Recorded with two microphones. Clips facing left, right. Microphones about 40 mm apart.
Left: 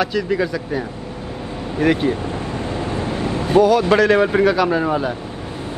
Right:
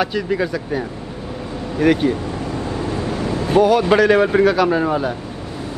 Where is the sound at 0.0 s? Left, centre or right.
Centre.